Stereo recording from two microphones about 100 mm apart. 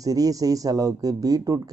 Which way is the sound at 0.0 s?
35° right (ahead or behind).